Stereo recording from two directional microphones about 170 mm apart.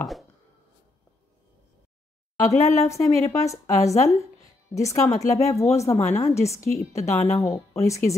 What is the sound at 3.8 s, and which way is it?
Speech, 40° left (ahead or behind).